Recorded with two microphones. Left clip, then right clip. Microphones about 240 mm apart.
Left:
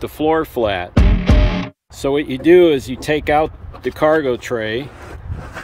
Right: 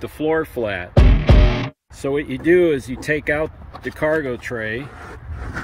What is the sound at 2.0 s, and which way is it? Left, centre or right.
Speech, centre.